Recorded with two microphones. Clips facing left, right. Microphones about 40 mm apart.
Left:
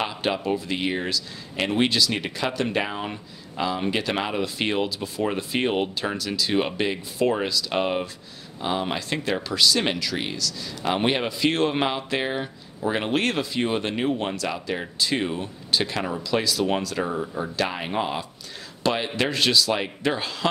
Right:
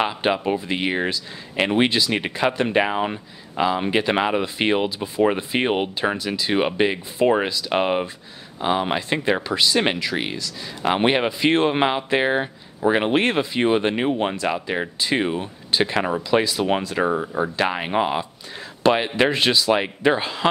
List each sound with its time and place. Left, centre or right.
0.0 s speech: right